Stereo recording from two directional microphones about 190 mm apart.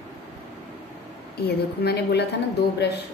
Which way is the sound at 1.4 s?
55° left (ahead or behind).